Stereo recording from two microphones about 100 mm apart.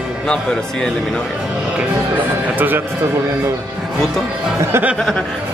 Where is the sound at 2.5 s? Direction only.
20° right (ahead or behind).